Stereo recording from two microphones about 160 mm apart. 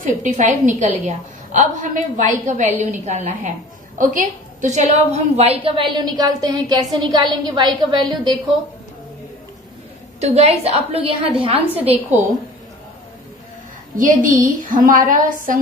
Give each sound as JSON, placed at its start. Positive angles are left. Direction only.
{"t": 0.0, "sound": "a woman's voice", "side_deg": -50}
{"t": 10.2, "sound": "a woman's voice", "side_deg": -40}
{"t": 13.9, "sound": "a woman's voice", "side_deg": -55}